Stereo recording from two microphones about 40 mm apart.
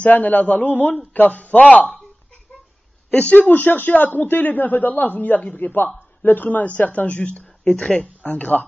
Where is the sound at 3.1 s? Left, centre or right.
Left.